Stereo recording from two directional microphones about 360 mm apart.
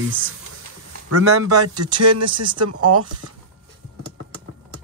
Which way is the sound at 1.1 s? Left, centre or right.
Right.